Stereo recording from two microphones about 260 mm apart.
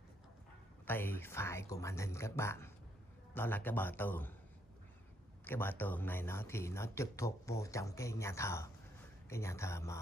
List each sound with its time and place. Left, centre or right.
0.8 s speech: centre
5.4 s speech: centre